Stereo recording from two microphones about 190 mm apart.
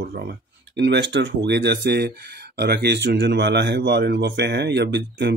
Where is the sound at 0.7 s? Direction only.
65° right (ahead or behind).